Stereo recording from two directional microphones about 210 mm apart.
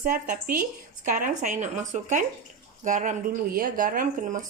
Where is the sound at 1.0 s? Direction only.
40° right (ahead or behind).